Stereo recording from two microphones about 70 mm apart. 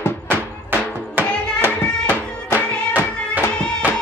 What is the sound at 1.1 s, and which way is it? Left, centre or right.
Music, right.